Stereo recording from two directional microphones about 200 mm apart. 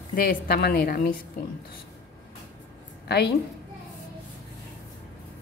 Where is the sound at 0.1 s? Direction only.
45° left (ahead or behind).